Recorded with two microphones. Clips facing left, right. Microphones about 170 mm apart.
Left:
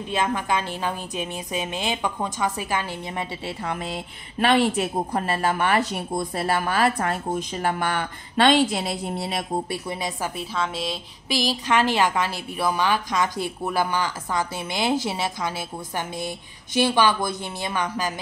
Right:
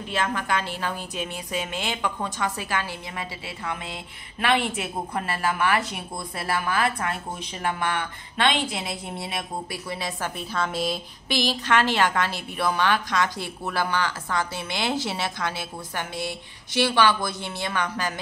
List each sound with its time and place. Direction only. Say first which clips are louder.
0.1 s a woman's voice: left 2 dB; 20° left (ahead or behind)
3.4 s speech: left 4 dB; 35° left (ahead or behind)
9.8 s a woman's voice: left 2 dB; 15° left (ahead or behind)
10.5 s speech: right 4 dB; centre (ahead or behind)
11.6 s a woman's voice: left 2 dB; 10° left (ahead or behind)
16.7 s a woman's voice: left 1 dB; 15° left (ahead or behind)